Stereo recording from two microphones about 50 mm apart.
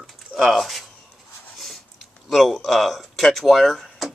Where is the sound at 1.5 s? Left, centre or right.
Centre.